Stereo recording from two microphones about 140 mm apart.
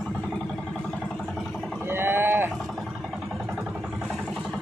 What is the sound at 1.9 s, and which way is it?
Livestock, 15° right (ahead or behind).